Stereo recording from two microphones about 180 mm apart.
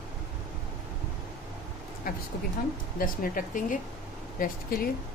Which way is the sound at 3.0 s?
50° left (ahead or behind).